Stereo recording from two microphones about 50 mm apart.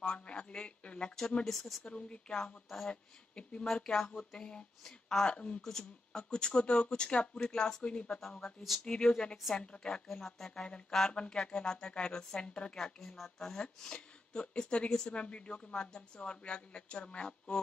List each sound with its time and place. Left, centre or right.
0.0 s speech: centre
1.9 s speech: centre
5.6 s speech: centre
8.2 s speech: centre
12.7 s speech: centre